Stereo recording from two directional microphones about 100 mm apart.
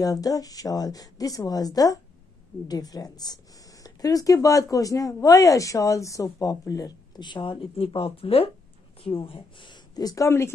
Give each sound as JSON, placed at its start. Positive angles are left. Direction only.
{"t": 0.0, "sound": "speech", "side_deg": 40}
{"t": 9.2, "sound": "speech", "side_deg": 60}